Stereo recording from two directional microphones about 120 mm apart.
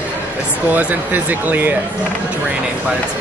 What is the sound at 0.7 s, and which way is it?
Speech, 15° right (ahead or behind).